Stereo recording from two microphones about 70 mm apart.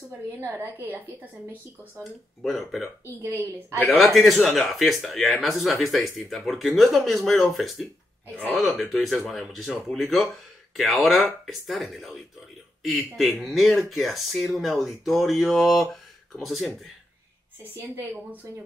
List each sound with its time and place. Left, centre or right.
0.4 s a woman's voice: right
2.4 s speech: centre
18.5 s speech: right